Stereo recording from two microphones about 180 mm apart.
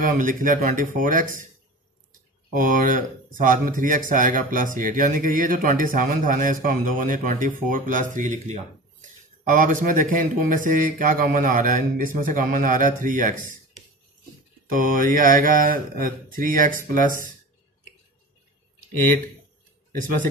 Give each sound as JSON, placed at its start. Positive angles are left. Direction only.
{"t": 0.0, "sound": "speech", "side_deg": -45}
{"t": 2.5, "sound": "speech", "side_deg": -45}
{"t": 14.7, "sound": "speech", "side_deg": -50}